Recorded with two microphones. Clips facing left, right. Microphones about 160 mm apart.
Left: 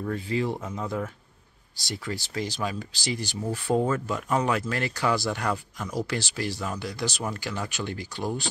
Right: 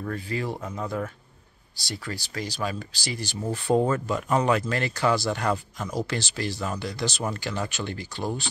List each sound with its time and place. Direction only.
0.0 s speech: 20° left (ahead or behind)
0.6 s speech: centre (ahead or behind)
1.9 s speech: 20° left (ahead or behind)
3.5 s speech: 5° left (ahead or behind)